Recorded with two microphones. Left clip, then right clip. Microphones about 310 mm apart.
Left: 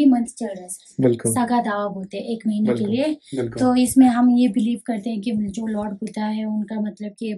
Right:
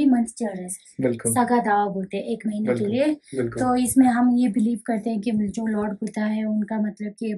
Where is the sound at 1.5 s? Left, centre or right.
Centre.